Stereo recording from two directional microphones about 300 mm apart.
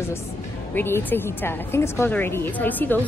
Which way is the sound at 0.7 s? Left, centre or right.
Centre.